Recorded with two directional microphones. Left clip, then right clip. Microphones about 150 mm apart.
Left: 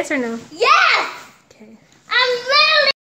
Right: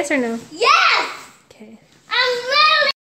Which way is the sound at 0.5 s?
10° left (ahead or behind).